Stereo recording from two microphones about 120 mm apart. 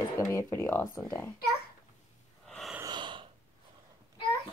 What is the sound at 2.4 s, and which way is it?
Gasp, centre (ahead or behind).